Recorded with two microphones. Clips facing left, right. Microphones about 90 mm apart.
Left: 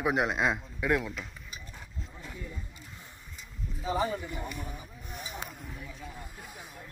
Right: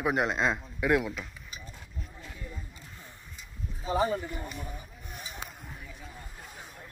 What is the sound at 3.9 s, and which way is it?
Speech, 25° right (ahead or behind).